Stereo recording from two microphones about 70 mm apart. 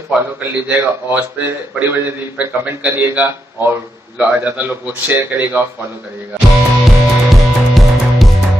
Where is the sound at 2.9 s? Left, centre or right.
Right.